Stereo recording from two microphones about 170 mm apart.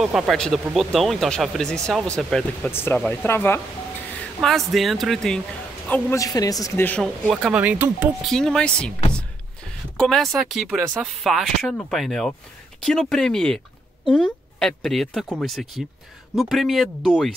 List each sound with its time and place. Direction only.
0.0 s speech: centre (ahead or behind)
4.4 s a woman's voice: centre (ahead or behind)
6.1 s a woman's voice: 20° left (ahead or behind)
6.9 s speech: 5° left (ahead or behind)
8.2 s speech: centre (ahead or behind)
9.9 s speech: centre (ahead or behind)